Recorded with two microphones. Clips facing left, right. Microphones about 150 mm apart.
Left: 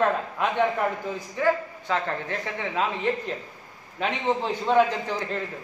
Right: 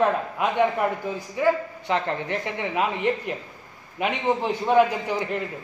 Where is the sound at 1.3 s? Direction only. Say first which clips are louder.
Right 2 dB; 15° right (ahead or behind).